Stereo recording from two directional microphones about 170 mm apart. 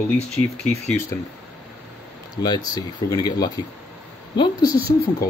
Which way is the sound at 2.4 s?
25° left (ahead or behind).